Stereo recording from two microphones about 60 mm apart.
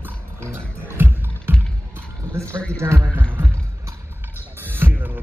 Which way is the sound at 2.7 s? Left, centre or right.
Right.